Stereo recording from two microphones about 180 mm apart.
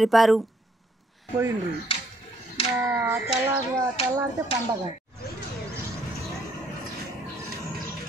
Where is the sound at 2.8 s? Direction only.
10° right (ahead or behind).